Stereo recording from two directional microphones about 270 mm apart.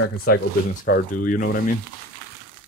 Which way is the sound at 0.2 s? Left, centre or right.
Left.